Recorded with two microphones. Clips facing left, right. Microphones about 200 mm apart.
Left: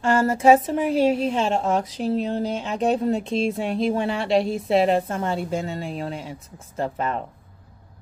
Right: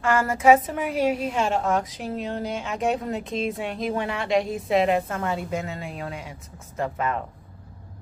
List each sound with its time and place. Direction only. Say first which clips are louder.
0.0 s a woman's voice: left 2 dB; 30° left (ahead or behind)